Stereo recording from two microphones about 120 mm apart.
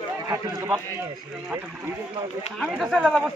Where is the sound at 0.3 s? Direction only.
25° right (ahead or behind).